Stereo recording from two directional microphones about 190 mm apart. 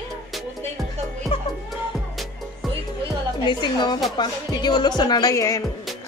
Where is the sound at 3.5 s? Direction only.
25° left (ahead or behind).